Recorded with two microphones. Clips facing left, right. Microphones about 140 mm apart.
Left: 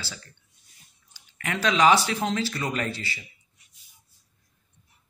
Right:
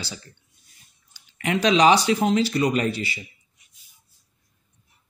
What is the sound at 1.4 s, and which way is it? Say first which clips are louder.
Speech: right 4 dB; 20° right (ahead or behind).